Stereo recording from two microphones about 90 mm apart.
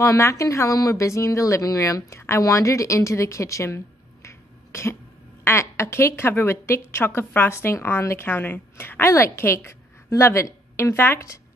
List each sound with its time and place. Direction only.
0.0 s a woman's voice: 35° left (ahead or behind)